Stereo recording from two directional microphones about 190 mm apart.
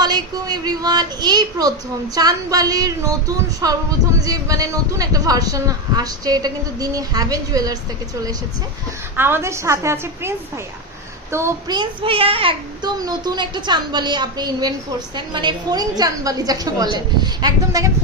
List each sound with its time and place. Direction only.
0.0 s a woman's voice: 20° right (ahead or behind)
9.1 s a woman's voice: 10° right (ahead or behind)
11.3 s speech: 15° right (ahead or behind)